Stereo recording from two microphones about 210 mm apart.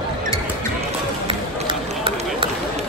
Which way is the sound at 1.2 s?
25° right (ahead or behind).